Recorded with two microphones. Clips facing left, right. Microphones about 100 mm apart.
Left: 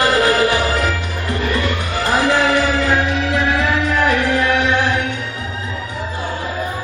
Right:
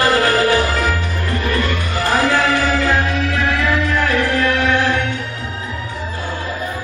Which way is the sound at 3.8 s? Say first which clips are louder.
Left 1 dB; 20° left (ahead or behind).